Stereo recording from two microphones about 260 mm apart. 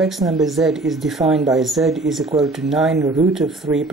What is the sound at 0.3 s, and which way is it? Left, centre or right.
Speech, centre.